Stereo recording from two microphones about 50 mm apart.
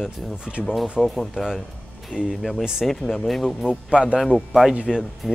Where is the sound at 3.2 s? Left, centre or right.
Centre.